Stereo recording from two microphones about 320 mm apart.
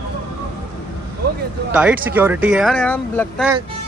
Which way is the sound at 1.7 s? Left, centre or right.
Centre.